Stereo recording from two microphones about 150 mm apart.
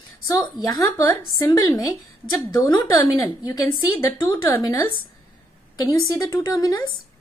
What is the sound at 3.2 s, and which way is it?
A woman's voice, 25° left (ahead or behind).